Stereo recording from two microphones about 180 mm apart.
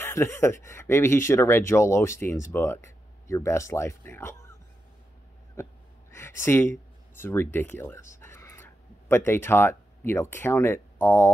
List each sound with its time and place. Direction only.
0.0 s speech: 15° left (ahead or behind)
5.6 s speech: 15° left (ahead or behind)
8.2 s a sound: 15° left (ahead or behind)